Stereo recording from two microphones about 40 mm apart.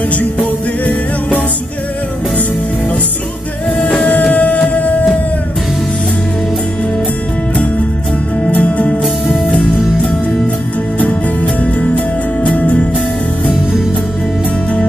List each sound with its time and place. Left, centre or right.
4.2 s music: left
8.5 s music: left
9.0 s music: centre
11.4 s music: left